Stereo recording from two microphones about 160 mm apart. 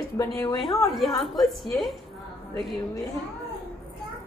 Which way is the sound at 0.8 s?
Centre (ahead or behind).